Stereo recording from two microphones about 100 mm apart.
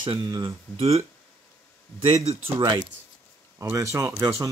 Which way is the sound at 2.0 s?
90° right.